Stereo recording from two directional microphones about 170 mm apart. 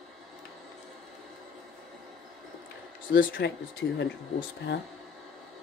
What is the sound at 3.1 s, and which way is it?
Speech, 90° left.